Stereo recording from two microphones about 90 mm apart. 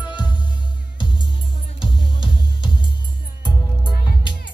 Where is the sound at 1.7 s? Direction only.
65° left (ahead or behind).